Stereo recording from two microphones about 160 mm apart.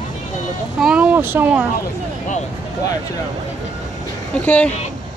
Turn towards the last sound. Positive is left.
turn(degrees=10)  # may be behind; listen again after turning